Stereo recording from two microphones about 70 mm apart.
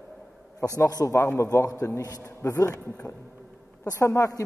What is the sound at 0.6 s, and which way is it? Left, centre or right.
Speech, left.